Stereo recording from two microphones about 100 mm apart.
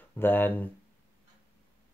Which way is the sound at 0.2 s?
20° left (ahead or behind).